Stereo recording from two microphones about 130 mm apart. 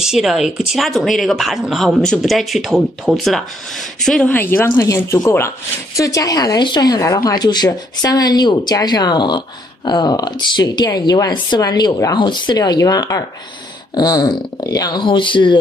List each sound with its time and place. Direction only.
0.0 s speech: 5° right (ahead or behind); by 15.6 s 40° left (ahead or behind)